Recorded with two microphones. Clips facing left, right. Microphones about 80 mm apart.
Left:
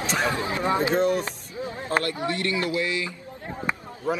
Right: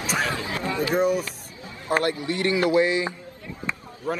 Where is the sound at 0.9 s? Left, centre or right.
Centre.